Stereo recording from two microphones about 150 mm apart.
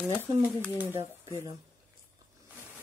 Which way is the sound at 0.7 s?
10° right (ahead or behind).